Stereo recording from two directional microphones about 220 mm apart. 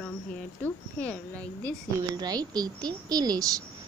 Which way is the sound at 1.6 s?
20° right (ahead or behind).